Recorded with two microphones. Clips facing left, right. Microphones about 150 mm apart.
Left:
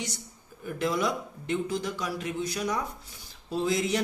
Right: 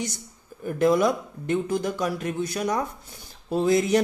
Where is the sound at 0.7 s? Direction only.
50° right (ahead or behind).